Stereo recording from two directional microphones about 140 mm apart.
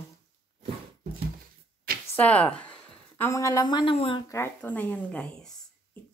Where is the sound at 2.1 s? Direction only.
10° left (ahead or behind); by 4.2 s 40° left (ahead or behind).